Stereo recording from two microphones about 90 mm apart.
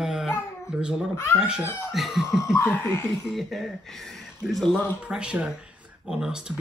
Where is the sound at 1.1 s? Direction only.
30° left (ahead or behind).